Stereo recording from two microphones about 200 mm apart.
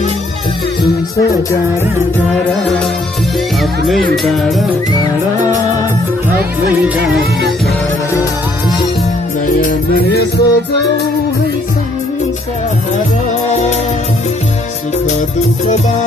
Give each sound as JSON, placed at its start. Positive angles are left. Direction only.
{"t": 4.2, "sound": "music", "side_deg": 0}
{"t": 9.6, "sound": "music", "side_deg": 50}
{"t": 13.5, "sound": "music", "side_deg": 35}